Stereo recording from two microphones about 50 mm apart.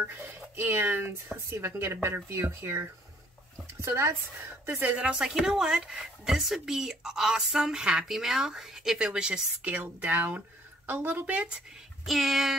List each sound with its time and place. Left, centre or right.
0.0 s speech: right
3.8 s a woman's voice: right
4.8 s speech: right
5.3 s speech: centre; by 11.2 s right
11.2 s speech: right
12.0 s speech: centre